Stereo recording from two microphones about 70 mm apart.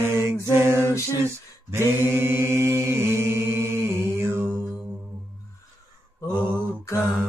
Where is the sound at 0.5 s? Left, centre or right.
Right.